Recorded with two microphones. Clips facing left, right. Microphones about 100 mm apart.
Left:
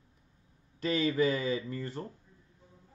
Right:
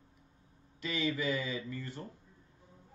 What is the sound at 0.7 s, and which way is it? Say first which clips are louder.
Speech: left 6 dB; 40° left (ahead or behind).